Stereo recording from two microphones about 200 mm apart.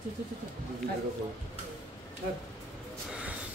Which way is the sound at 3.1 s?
5° right (ahead or behind).